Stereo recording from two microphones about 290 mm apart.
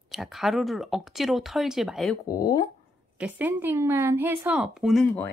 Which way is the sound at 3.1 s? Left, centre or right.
Centre.